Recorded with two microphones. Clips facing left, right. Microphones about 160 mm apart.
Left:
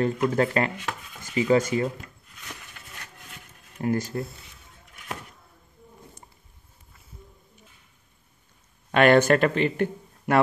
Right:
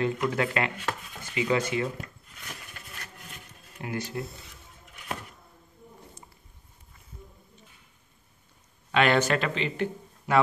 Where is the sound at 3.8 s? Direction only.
45° left (ahead or behind).